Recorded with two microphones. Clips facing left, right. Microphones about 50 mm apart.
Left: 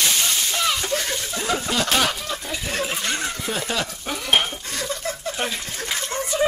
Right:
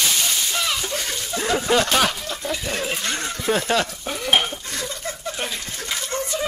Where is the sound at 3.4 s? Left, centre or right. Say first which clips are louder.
Right 8 dB; centre.